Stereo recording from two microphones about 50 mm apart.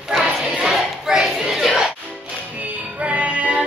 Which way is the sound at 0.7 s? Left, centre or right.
Centre.